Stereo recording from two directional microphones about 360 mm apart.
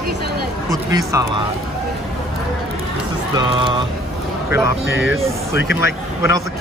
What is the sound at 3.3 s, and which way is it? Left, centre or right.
Speech, centre.